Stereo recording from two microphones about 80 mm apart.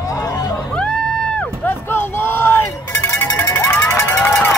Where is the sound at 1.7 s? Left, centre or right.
Left.